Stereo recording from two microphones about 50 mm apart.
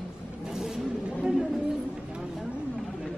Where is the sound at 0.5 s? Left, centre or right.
Centre.